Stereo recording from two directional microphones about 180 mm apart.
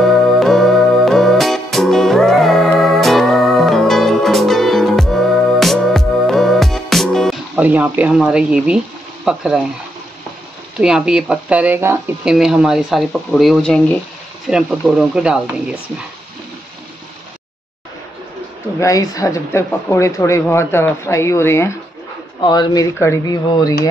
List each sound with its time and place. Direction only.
0.0 s music: centre (ahead or behind)
7.6 s speech: 10° right (ahead or behind)
10.8 s speech: 5° right (ahead or behind)
18.8 s speech: 20° left (ahead or behind)
22.4 s speech: 25° left (ahead or behind)